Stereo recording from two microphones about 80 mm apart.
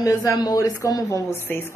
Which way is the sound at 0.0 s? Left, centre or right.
Left.